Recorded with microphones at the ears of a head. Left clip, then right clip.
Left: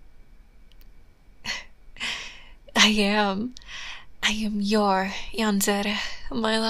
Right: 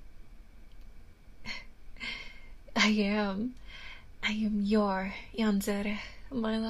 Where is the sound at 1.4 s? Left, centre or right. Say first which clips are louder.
Left 10 dB; left.